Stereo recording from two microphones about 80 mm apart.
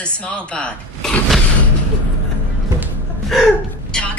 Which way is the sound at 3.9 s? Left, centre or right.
Centre.